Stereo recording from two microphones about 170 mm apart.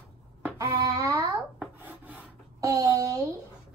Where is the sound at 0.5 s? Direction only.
25° right (ahead or behind).